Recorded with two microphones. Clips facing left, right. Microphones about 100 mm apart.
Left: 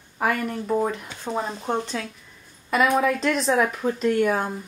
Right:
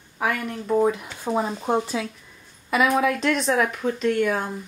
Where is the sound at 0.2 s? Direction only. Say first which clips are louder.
Left 2 dB; centre (ahead or behind).